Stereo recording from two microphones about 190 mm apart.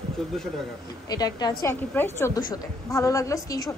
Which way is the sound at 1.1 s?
20° left (ahead or behind).